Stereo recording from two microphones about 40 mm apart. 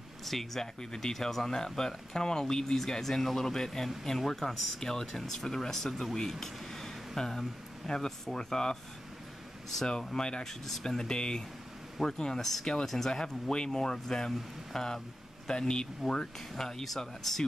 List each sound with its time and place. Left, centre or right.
0.2 s speech: centre
10.1 s a man's voice: centre